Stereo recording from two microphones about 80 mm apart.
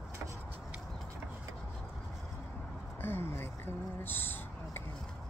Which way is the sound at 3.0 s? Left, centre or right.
Left.